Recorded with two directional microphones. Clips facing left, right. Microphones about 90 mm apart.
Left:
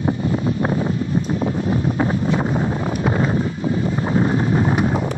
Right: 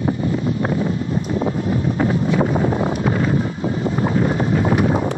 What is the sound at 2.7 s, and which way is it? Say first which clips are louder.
Wind noise: right 3 dB; 30° right (ahead or behind).